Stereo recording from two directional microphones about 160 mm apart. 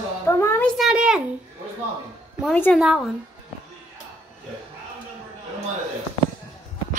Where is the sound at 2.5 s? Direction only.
10° left (ahead or behind).